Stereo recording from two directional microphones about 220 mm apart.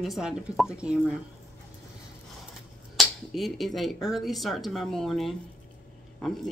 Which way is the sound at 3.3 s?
Centre (ahead or behind).